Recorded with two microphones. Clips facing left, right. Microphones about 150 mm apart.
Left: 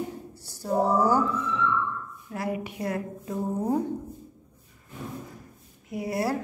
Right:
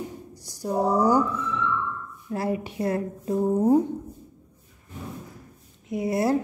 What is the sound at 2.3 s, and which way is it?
A woman's voice, 30° right (ahead or behind).